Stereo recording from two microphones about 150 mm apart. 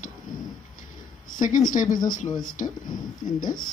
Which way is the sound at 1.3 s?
60° left (ahead or behind).